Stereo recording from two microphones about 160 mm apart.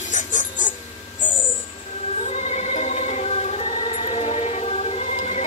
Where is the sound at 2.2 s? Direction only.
45° left (ahead or behind).